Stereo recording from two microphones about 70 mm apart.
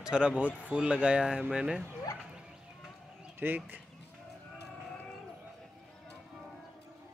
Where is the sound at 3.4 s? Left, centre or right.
Right.